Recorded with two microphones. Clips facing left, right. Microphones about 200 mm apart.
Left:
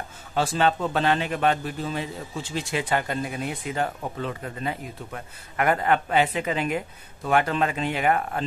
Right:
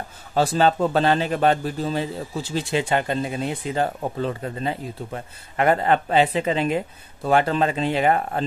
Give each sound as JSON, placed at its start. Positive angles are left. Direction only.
{"t": 0.3, "sound": "a man's voice", "side_deg": -35}